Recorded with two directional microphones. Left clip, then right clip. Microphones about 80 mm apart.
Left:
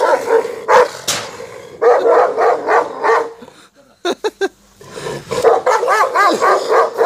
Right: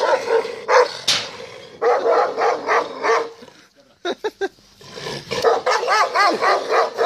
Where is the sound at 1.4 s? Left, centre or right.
Right.